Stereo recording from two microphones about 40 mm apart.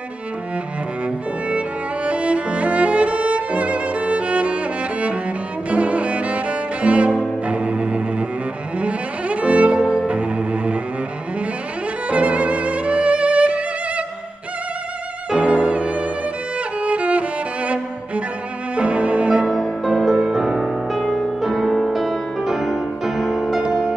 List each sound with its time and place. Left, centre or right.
2.0 s music: right
5.7 s cello: right
7.4 s music: right
9.8 s cello: right
12.1 s music: right
15.3 s music: right
18.8 s cello: right
19.4 s music: centre